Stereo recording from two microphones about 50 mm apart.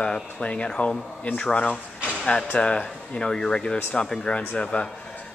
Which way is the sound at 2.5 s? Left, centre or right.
Left.